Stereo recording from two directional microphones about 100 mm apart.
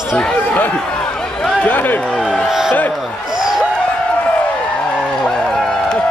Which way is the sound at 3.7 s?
15° left (ahead or behind).